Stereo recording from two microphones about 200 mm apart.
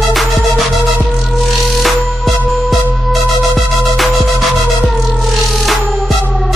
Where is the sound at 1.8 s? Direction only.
Centre (ahead or behind).